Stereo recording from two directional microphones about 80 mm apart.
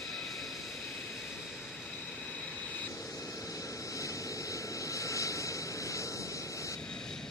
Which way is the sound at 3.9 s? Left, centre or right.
Left.